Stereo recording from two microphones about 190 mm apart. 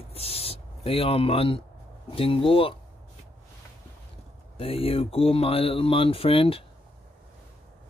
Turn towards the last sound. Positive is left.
turn(degrees=30)  # may be behind; listen again after turning